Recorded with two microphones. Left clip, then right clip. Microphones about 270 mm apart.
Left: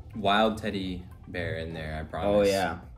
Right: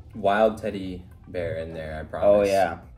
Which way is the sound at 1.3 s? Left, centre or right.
Centre.